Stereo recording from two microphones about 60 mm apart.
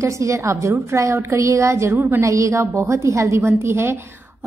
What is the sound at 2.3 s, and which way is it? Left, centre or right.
A woman's voice, right.